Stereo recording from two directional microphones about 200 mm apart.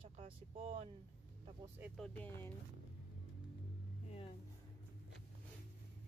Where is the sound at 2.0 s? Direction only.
5° left (ahead or behind).